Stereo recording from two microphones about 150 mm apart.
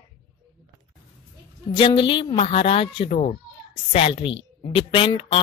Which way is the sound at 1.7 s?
35° left (ahead or behind).